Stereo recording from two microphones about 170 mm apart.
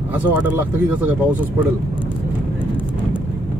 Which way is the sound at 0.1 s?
10° right (ahead or behind).